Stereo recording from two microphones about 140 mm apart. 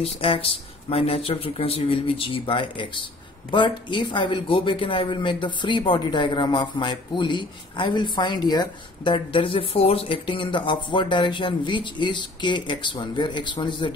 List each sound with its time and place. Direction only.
0.0 s a man's voice: 40° left (ahead or behind)